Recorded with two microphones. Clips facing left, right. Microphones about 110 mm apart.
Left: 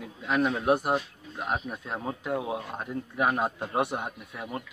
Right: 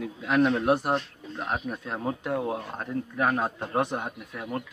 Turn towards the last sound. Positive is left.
turn(degrees=10)  # may be behind; listen again after turning